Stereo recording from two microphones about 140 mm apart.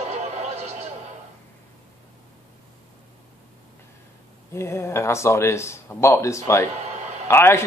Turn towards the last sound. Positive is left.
turn(degrees=20)  # may be behind; listen again after turning